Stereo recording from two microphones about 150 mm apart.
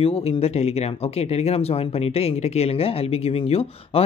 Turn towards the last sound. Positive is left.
turn(degrees=40)  # may be behind; listen again after turning